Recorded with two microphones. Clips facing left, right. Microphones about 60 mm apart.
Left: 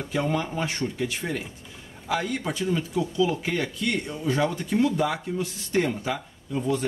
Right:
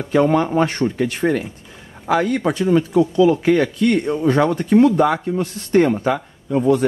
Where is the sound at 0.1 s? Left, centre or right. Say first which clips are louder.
Right 12 dB; right.